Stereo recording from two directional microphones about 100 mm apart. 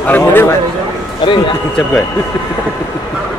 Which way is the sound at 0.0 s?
20° left (ahead or behind).